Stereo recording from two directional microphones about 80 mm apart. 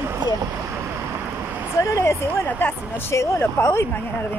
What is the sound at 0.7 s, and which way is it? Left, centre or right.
Boat, right.